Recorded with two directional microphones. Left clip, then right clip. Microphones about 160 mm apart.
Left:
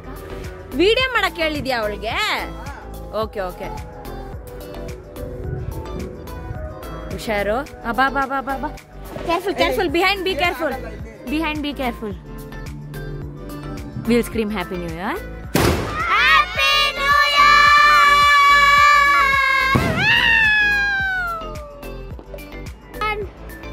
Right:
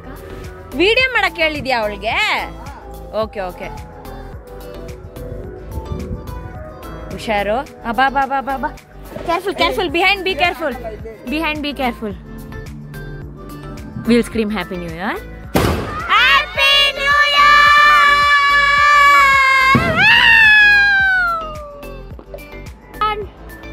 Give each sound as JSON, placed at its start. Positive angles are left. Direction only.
{"t": 0.7, "sound": "speech", "side_deg": 10}
{"t": 7.1, "sound": "speech", "side_deg": 5}
{"t": 9.3, "sound": "speech", "side_deg": 10}
{"t": 11.2, "sound": "speech", "side_deg": 0}
{"t": 14.0, "sound": "speech", "side_deg": 0}
{"t": 16.1, "sound": "music", "side_deg": -5}
{"t": 16.6, "sound": "child singing", "side_deg": 5}
{"t": 18.9, "sound": "music", "side_deg": -5}
{"t": 22.9, "sound": "music", "side_deg": 20}